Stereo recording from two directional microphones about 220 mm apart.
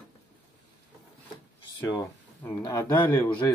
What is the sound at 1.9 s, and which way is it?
Speech, 15° left (ahead or behind).